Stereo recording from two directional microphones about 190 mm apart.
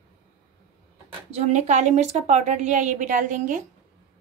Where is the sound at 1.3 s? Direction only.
35° right (ahead or behind).